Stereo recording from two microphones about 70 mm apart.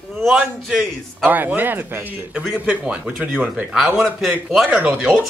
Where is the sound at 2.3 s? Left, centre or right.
Centre.